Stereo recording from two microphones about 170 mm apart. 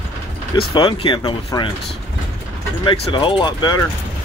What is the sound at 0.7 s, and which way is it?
Speech, 30° left (ahead or behind).